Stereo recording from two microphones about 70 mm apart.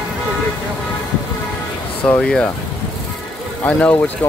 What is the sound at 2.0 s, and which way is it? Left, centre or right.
Speech, centre.